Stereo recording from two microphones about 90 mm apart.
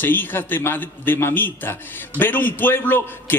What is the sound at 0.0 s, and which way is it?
A man's voice, 25° left (ahead or behind).